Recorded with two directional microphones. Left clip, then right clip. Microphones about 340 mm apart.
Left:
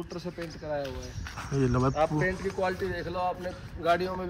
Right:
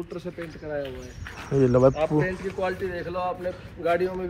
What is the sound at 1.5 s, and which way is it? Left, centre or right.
Speech, centre.